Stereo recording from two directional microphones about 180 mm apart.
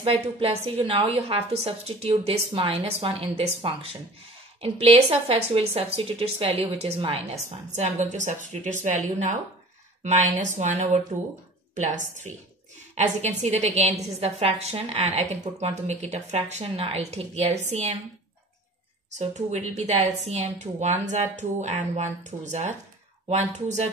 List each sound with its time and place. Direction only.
0.0 s a woman's voice: 30° right (ahead or behind)
12.9 s a woman's voice: 40° right (ahead or behind)
19.1 s a woman's voice: 40° right (ahead or behind)